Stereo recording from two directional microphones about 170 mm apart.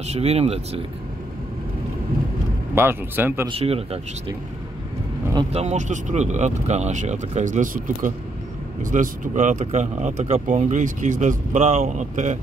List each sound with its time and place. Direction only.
0.0 s speech: 40° right (ahead or behind)
2.7 s speech: 15° right (ahead or behind)
3.4 s speech: 35° right (ahead or behind)
5.5 s speech: 40° right (ahead or behind)